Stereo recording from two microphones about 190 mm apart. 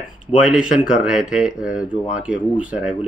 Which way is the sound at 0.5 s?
5° right (ahead or behind).